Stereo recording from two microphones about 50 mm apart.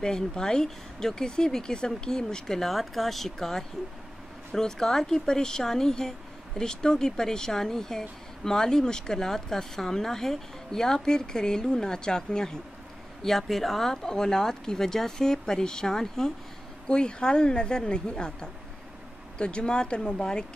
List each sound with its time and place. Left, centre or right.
0.0 s speech: centre